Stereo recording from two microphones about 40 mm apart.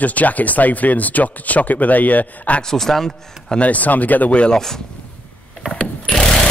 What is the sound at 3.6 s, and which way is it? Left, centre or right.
Speech, left.